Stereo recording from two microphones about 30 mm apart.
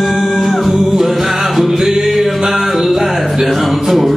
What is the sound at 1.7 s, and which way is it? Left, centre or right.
Music, centre.